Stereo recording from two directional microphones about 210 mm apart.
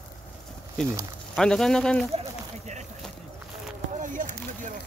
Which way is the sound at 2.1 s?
35° right (ahead or behind).